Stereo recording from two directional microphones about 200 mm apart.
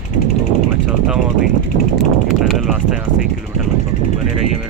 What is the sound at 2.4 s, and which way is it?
Speech, centre (ahead or behind).